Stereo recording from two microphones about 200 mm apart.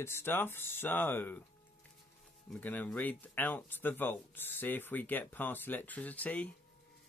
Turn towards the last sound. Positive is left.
turn(degrees=5)  # may be behind; listen again after turning